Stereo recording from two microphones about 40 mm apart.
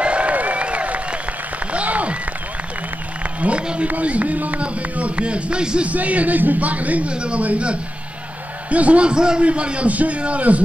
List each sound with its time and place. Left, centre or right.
0.0 s applause: right
3.3 s run: right
3.8 s speech: right
5.9 s speech: right
7.1 s a man's voice: right